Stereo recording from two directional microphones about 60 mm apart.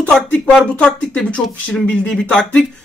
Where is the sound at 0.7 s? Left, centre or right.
Centre.